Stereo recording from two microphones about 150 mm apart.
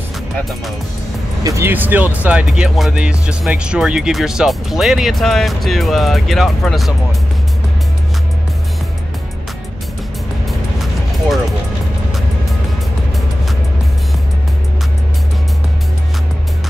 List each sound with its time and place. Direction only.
1.4 s speech: 15° right (ahead or behind); by 7.2 s centre (ahead or behind)
10.8 s music: centre (ahead or behind)